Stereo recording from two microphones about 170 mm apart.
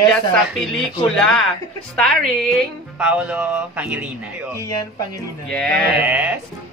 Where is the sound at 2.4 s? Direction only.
Centre (ahead or behind).